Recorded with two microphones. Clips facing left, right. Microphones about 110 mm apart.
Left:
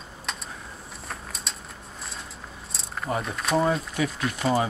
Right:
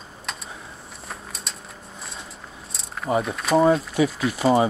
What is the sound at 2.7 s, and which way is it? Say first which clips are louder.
Speech: right 6 dB; centre (ahead or behind).